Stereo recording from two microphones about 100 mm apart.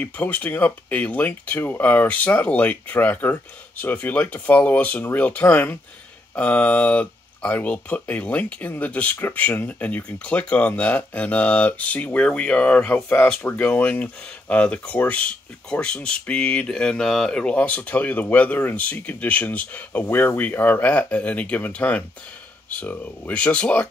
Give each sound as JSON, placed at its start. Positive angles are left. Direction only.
{"t": 0.0, "sound": "speech", "side_deg": 15}